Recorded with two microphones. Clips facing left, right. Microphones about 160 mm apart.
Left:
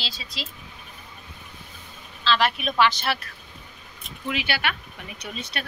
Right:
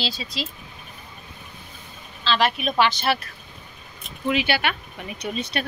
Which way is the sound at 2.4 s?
25° right (ahead or behind).